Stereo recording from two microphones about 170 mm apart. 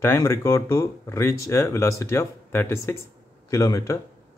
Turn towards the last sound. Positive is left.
turn(degrees=20)  # may be behind; listen again after turning